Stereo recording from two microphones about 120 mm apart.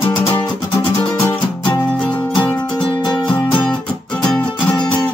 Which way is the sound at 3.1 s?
10° left (ahead or behind).